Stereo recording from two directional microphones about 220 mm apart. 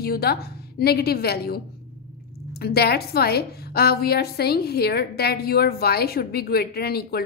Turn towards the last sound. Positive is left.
turn(degrees=45)  # may be behind; listen again after turning